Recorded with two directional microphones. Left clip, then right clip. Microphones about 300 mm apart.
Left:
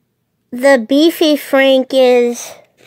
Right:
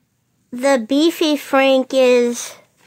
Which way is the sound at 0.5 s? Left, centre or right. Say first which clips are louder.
Left 6 dB; centre.